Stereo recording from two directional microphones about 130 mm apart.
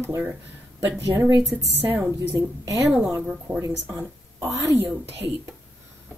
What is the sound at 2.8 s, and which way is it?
Speech, 5° right (ahead or behind).